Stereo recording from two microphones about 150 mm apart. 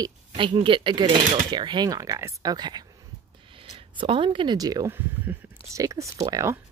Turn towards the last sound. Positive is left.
turn(degrees=-25)  # may be behind; listen again after turning